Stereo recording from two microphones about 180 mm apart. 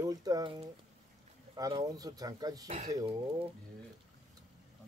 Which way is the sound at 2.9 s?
20° right (ahead or behind).